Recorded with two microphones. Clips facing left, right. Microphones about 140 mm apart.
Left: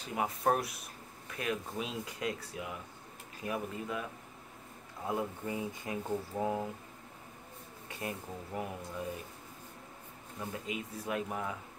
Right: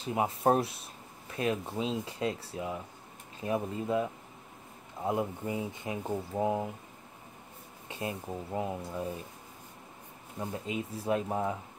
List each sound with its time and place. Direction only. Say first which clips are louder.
0.0 s speech: right 4 dB; 25° right (ahead or behind)
7.9 s speech: right 4 dB; 25° right (ahead or behind)
10.4 s speech: right 4 dB; 30° right (ahead or behind)